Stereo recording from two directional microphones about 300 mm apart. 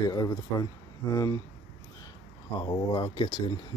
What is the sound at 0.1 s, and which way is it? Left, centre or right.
Speech, centre.